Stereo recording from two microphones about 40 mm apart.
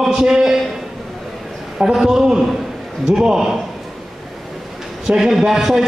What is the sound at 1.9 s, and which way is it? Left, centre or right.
A man's voice, centre.